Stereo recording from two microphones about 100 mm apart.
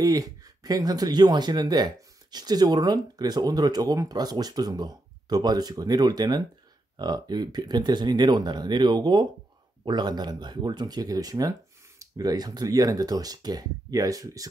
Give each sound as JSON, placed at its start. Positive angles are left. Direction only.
{"t": 0.0, "sound": "speech", "side_deg": -35}